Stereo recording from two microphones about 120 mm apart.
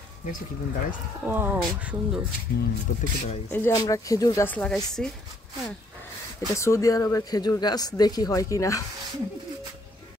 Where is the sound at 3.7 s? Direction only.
30° left (ahead or behind).